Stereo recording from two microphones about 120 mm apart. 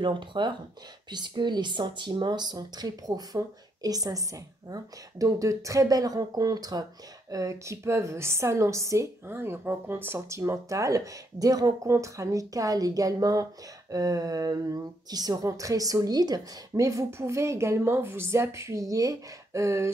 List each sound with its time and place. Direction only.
0.0 s speech: 40° right (ahead or behind); by 19.9 s 25° right (ahead or behind)